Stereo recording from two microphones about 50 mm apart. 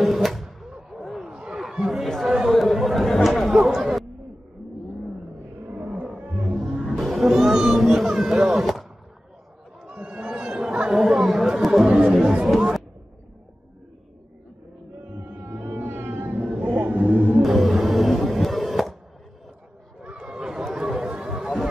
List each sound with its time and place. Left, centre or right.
0.0 s a sound: centre
1.8 s chatter: centre
5.9 s roaring cats: right
7.0 s music: centre
8.4 s a sound: centre
9.8 s chatter: right; by 11.9 s centre
11.9 s chatter: right
15.0 s whale vocalization: right
17.4 s printer: centre
20.0 s chatter: right